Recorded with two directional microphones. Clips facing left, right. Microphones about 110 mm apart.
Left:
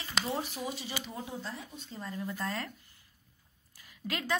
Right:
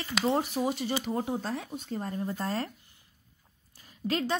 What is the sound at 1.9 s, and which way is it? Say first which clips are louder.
Speech: right 7 dB; 50° right (ahead or behind).